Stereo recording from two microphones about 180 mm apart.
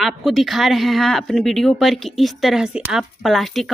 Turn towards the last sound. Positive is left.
turn(degrees=0)  # may be behind; listen again after turning